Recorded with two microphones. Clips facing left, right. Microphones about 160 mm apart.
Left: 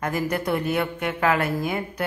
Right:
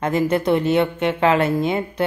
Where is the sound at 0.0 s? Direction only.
25° right (ahead or behind).